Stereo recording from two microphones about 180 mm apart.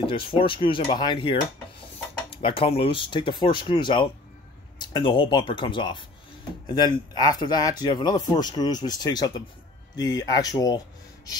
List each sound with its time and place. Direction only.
0.0 s speech: 30° left (ahead or behind)